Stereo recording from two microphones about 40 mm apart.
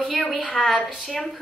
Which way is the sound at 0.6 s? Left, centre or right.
Left.